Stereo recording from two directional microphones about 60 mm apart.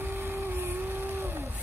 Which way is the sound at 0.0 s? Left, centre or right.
Right.